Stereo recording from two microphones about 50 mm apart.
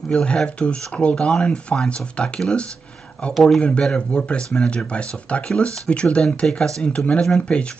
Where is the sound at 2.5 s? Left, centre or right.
Left.